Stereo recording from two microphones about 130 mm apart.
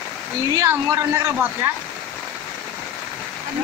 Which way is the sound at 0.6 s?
20° right (ahead or behind).